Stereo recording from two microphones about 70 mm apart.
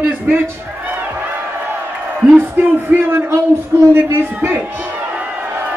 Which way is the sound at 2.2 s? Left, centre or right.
Right.